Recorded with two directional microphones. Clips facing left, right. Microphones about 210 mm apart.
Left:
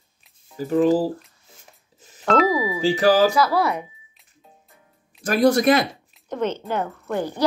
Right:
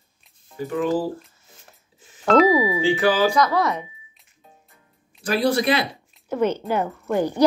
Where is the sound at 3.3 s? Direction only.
5° left (ahead or behind).